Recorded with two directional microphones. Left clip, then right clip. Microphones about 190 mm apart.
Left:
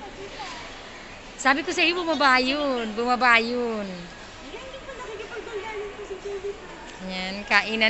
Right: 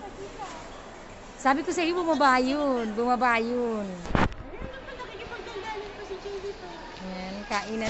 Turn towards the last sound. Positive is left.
turn(degrees=5)  # may be behind; listen again after turning